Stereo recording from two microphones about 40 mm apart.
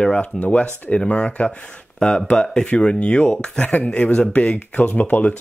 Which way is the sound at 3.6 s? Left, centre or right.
Left.